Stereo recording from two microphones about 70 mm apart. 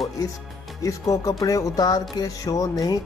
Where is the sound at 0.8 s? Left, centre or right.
Left.